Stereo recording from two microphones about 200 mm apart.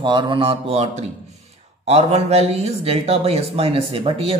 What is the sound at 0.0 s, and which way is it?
Mantra, 25° right (ahead or behind).